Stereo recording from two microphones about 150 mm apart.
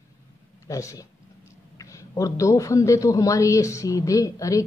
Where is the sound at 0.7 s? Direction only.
20° left (ahead or behind).